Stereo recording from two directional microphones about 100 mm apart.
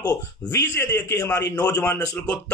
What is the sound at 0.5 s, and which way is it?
Speech, 25° left (ahead or behind).